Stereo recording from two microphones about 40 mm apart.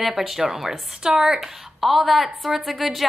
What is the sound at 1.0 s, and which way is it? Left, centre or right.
Speech, right.